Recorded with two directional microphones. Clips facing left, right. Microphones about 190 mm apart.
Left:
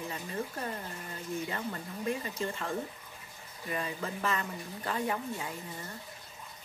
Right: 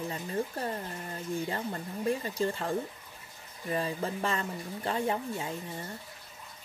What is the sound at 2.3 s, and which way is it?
Speech, 35° right (ahead or behind).